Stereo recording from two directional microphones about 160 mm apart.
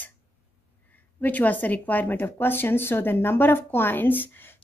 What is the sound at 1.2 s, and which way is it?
Speech, 10° left (ahead or behind).